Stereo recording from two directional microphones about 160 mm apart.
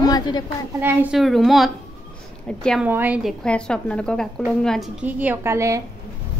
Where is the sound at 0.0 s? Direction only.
25° left (ahead or behind).